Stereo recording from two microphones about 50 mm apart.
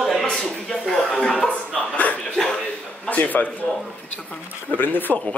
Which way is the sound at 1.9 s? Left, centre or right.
Left.